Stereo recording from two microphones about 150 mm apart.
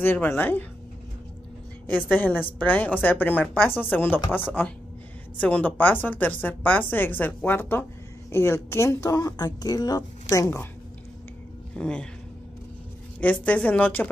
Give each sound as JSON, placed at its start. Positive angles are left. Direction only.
{"t": 0.0, "sound": "a woman's voice", "side_deg": 15}
{"t": 2.1, "sound": "a woman's voice", "side_deg": 15}
{"t": 5.4, "sound": "a woman's voice", "side_deg": 10}
{"t": 11.7, "sound": "speech", "side_deg": 5}
{"t": 13.2, "sound": "a woman's voice", "side_deg": 10}